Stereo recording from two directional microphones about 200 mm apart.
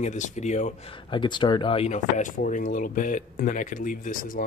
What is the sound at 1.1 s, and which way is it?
Speech, 25° left (ahead or behind).